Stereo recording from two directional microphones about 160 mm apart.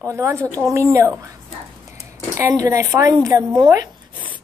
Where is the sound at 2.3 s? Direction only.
20° right (ahead or behind).